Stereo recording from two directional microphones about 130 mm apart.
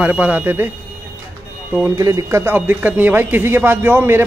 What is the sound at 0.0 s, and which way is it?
Speech, 10° right (ahead or behind).